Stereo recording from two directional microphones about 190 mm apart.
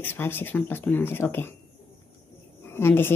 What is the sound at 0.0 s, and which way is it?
A woman's voice, 10° left (ahead or behind).